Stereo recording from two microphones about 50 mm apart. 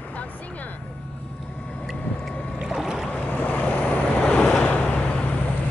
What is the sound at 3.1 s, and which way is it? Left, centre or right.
Vehicle, left.